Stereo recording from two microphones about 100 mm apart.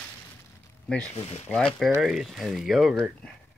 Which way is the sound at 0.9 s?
5° left (ahead or behind).